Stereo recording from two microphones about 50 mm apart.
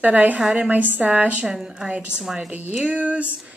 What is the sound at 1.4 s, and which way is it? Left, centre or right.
Speech, centre.